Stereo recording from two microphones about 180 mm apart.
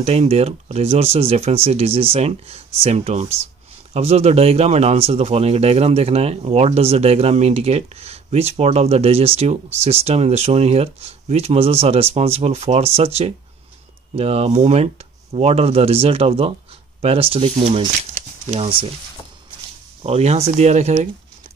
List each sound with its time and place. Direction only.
0.0 s speech: 35° right (ahead or behind)
18.1 s a sound: 35° right (ahead or behind)
20.0 s speech: 35° right (ahead or behind)